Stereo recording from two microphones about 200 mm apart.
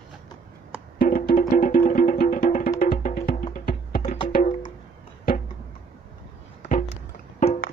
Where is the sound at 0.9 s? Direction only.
45° left (ahead or behind).